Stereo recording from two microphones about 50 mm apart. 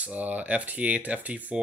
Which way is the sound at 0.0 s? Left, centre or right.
Right.